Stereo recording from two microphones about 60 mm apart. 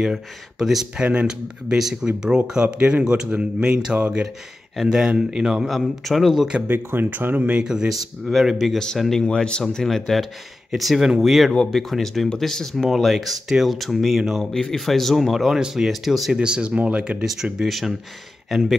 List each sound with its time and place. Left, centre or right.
0.0 s speech: centre
0.9 s speech: centre
6.7 s speech: right
7.6 s speech: centre
14.4 s speech: centre
16.3 s speech: centre
17.2 s speech: centre